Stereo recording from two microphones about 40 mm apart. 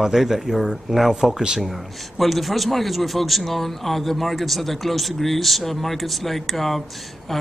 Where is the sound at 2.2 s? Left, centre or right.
Centre.